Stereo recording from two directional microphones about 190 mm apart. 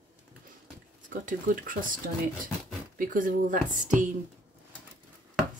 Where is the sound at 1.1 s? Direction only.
45° right (ahead or behind).